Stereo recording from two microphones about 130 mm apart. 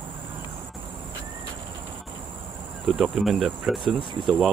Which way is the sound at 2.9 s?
Centre (ahead or behind).